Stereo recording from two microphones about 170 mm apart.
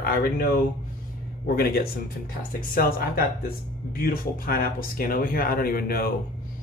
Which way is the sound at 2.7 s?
60° left (ahead or behind).